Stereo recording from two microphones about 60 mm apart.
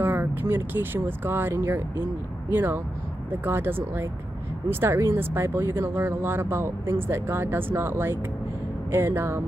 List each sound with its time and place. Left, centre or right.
0.0 s speech: right